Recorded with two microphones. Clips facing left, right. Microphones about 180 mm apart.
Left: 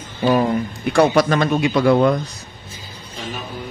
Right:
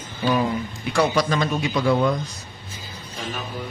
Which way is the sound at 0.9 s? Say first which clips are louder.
Left 6 dB; 55° left (ahead or behind).